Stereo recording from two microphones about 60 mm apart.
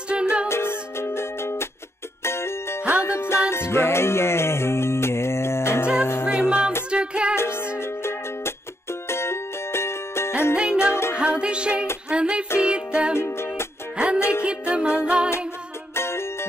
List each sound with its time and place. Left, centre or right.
0.1 s music: centre
0.5 s music: left
2.8 s music: centre
3.1 s music: left
6.2 s music: centre
9.1 s music: left
10.5 s music: centre
10.8 s music: left
11.1 s music: centre
13.2 s music: left
13.9 s music: centre
15.9 s music: left